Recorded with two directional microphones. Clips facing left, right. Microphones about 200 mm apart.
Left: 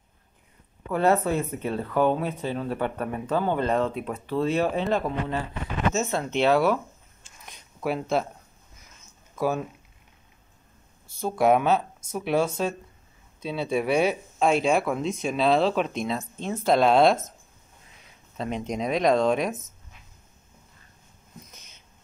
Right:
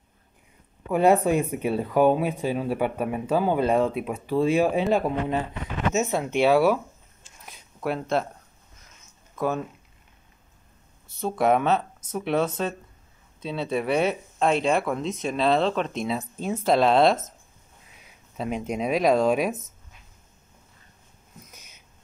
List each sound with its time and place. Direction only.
0.9 s speech: 15° right (ahead or behind)
7.4 s a sound: centre (ahead or behind)
9.3 s speech: 5° left (ahead or behind)
11.1 s speech: 5° left (ahead or behind)
18.4 s speech: 5° right (ahead or behind)
21.5 s a sound: 10° right (ahead or behind)